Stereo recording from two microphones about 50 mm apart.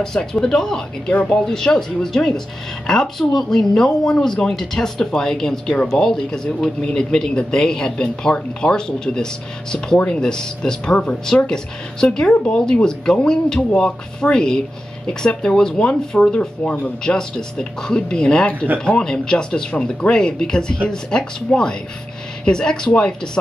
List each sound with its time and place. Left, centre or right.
0.0 s a man's voice: centre
16.3 s speech: left
17.0 s a man's voice: centre